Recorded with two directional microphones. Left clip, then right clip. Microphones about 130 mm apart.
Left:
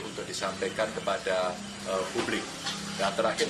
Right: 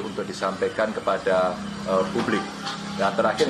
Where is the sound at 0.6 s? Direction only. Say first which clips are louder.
Right 6 dB; 35° left (ahead or behind).